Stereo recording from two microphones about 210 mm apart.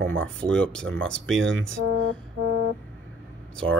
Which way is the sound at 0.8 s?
65° right (ahead or behind).